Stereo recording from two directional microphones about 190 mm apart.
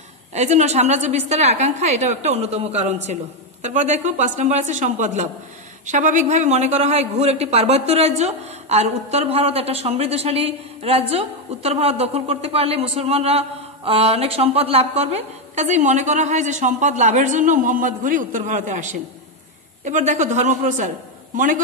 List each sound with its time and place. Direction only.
0.3 s a woman's voice: 35° right (ahead or behind)